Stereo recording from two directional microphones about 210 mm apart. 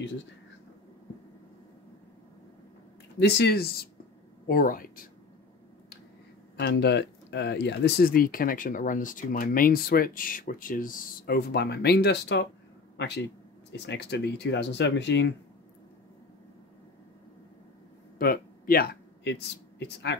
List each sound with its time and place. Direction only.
3.2 s speech: 50° left (ahead or behind)
6.5 s speech: 55° left (ahead or behind)
18.1 s a sound: 45° left (ahead or behind)
20.1 s speech: 55° left (ahead or behind)